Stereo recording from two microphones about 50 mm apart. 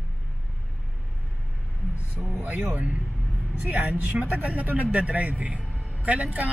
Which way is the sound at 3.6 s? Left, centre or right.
Right.